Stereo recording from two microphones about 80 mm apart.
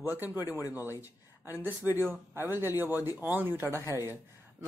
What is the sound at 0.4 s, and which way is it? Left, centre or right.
Speech, left.